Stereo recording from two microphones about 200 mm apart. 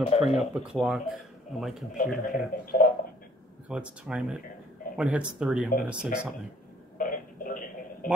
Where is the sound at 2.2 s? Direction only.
45° left (ahead or behind).